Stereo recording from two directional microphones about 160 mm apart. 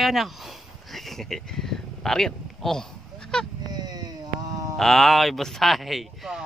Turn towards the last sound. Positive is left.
turn(degrees=0)  # may be behind; listen again after turning